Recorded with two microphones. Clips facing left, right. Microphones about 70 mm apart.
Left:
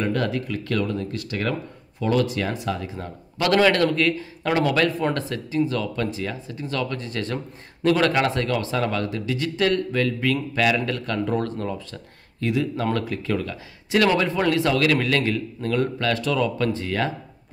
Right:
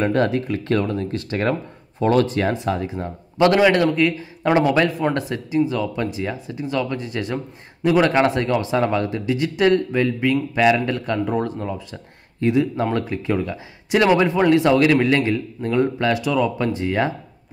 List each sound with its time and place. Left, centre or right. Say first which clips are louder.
0.0 s a man's voice: right 5 dB; right; by 8.1 s centre
8.1 s a man's voice: right 4 dB; right
12.4 s a man's voice: right 5 dB; right